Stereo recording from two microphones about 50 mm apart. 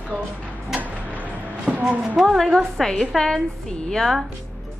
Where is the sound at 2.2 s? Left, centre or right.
Centre.